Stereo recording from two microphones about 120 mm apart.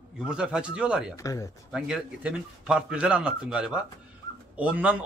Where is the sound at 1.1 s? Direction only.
25° left (ahead or behind).